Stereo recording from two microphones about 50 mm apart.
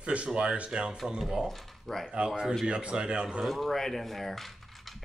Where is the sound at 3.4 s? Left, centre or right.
Centre.